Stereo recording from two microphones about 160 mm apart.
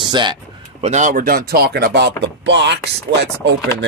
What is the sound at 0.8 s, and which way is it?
Speech, 50° right (ahead or behind).